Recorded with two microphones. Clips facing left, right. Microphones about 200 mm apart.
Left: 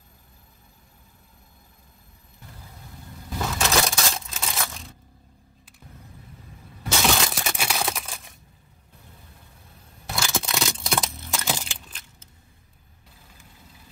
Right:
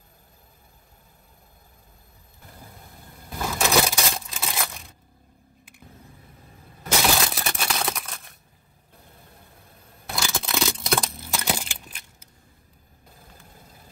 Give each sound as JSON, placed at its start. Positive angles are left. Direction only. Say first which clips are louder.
{"t": 3.4, "sound": "crushing", "louder": "right 2 dB", "side_deg": -10}
{"t": 7.0, "sound": "crushing", "louder": "even", "side_deg": 0}
{"t": 7.5, "sound": "camera", "louder": "even", "side_deg": 5}
{"t": 10.0, "sound": "scissors", "louder": "left 1 dB", "side_deg": 0}
{"t": 11.5, "sound": "crushing", "louder": "right 1 dB", "side_deg": -10}
{"t": 13.4, "sound": "vehicle", "louder": "right 2 dB", "side_deg": -50}